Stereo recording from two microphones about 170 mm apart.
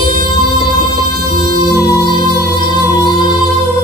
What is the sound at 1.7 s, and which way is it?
Music, 20° left (ahead or behind).